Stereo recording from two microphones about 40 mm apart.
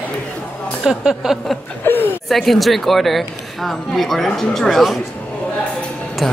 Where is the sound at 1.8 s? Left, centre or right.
Left.